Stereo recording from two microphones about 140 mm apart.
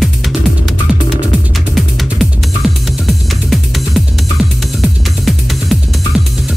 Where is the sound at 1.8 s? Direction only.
Centre (ahead or behind).